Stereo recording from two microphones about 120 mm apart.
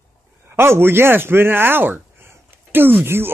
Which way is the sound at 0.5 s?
20° right (ahead or behind).